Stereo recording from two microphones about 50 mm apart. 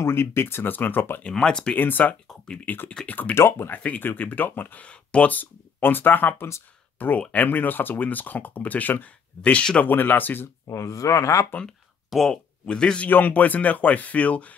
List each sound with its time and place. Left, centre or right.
0.0 s speech: left
1.3 s speech: centre
1.8 s speech: left
3.3 s speech: left
3.7 s speech: left
4.8 s speech: left
9.8 s speech: left
10.7 s speech: left
12.3 s speech: centre
13.1 s speech: left